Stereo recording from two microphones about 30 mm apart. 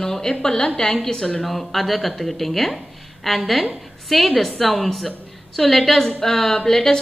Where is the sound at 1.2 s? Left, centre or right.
Centre.